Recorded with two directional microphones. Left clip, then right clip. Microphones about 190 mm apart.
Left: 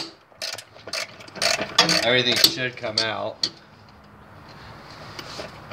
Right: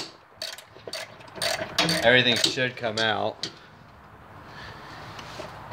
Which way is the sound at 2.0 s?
40° right (ahead or behind).